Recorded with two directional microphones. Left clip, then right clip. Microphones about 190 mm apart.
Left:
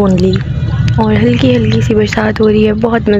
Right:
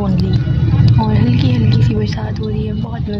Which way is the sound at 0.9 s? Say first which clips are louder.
Left 10 dB; 15° left (ahead or behind).